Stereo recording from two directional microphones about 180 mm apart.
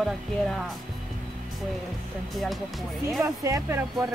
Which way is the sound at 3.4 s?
15° right (ahead or behind).